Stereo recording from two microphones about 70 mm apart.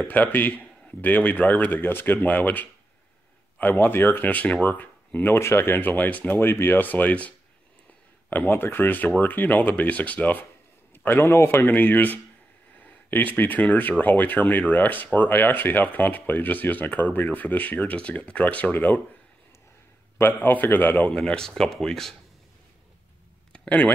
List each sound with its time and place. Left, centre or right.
0.1 s speech: left
6.3 s speech: left
11.1 s speech: left
20.2 s speech: left
21.1 s speech: centre
23.5 s a sound: centre